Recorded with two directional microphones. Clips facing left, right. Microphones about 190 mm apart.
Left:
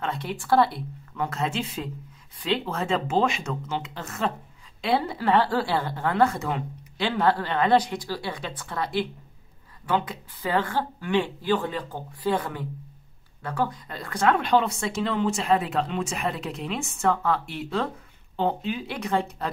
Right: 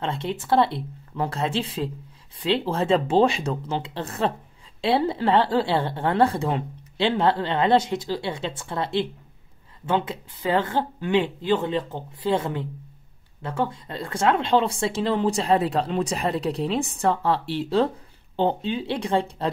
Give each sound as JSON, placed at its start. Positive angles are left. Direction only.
{"t": 0.0, "sound": "a woman's voice", "side_deg": -25}